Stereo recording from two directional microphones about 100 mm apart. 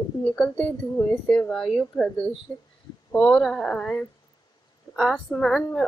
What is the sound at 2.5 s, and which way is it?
Speech, 25° left (ahead or behind).